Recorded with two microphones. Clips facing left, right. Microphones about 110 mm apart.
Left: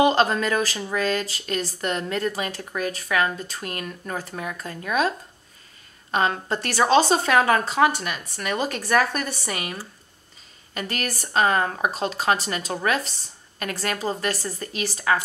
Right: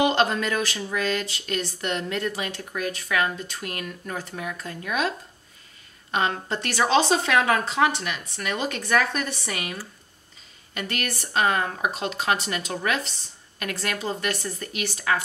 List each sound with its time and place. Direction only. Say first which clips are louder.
0.0 s speech: left 3 dB; 40° left (ahead or behind)
6.1 s speech: left 2 dB; 40° left (ahead or behind)